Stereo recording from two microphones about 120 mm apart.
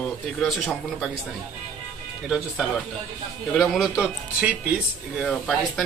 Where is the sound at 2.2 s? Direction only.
5° right (ahead or behind).